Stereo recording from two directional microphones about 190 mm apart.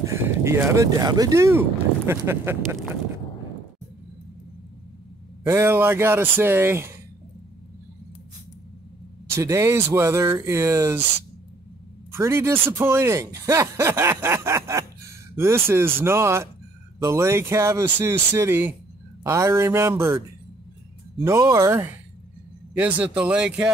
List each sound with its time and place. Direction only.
0.0 s speech: 15° right (ahead or behind)
5.5 s speech: 15° right (ahead or behind)
9.3 s speech: 15° right (ahead or behind)
12.1 s speech: 15° right (ahead or behind)
21.3 s speech: 15° right (ahead or behind)